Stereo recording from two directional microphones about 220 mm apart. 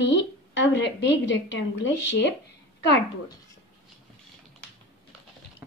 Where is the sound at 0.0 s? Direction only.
55° left (ahead or behind).